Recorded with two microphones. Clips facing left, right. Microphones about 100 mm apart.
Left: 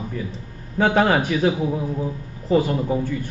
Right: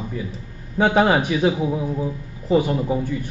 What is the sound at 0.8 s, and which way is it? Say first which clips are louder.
A man's voice: right 1 dB; 15° right (ahead or behind).